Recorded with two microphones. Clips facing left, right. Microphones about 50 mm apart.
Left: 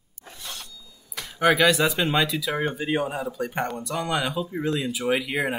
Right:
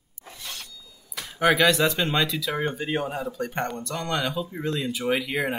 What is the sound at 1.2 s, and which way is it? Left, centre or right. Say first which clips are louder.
Speech: left 1 dB; centre.